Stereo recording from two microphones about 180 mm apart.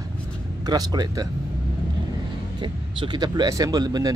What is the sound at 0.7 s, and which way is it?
Speech, 20° right (ahead or behind).